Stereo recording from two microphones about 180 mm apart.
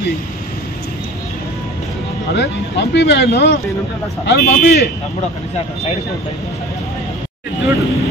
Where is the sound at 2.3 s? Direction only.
75° left (ahead or behind).